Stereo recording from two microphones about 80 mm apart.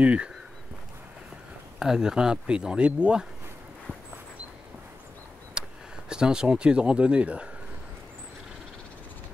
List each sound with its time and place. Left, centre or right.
0.0 s speech: centre
1.8 s speech: centre
5.5 s speech: centre